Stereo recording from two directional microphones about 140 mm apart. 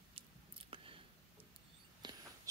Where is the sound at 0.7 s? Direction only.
40° right (ahead or behind).